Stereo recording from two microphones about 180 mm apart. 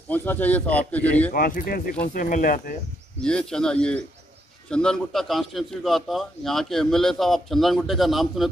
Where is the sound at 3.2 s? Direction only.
5° left (ahead or behind).